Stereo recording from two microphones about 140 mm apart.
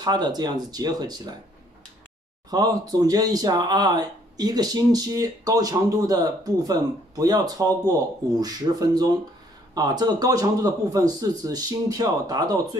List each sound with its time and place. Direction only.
0.0 s speech: 30° right (ahead or behind)
2.5 s speech: 30° right (ahead or behind)